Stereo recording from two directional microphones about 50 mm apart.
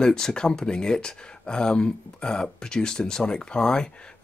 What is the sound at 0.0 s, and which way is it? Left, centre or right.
Speech, centre.